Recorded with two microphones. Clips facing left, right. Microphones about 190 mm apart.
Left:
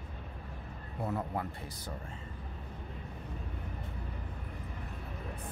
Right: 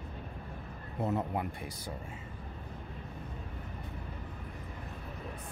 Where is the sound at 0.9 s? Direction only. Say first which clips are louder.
Right 3 dB; 20° right (ahead or behind).